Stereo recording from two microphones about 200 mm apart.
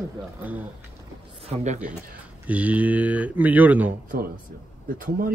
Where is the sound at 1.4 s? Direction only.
35° right (ahead or behind).